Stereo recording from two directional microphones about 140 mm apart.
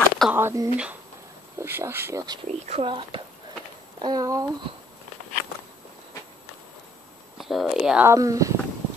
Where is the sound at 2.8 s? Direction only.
35° right (ahead or behind).